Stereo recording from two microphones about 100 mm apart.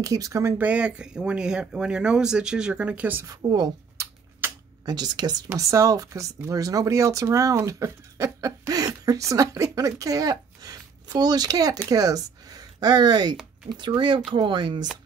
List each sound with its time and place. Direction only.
0.0 s speech: 35° right (ahead or behind)
0.6 s speech: 10° right (ahead or behind)
3.4 s speech: 50° right (ahead or behind)
4.0 s a sound: 30° right (ahead or behind)
4.4 s camera: 20° right (ahead or behind)
4.8 s speech: 45° right (ahead or behind)